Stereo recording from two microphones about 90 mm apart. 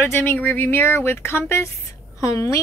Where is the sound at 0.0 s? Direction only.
25° left (ahead or behind).